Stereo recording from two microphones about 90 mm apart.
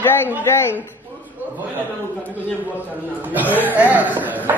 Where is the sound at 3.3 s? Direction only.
20° right (ahead or behind).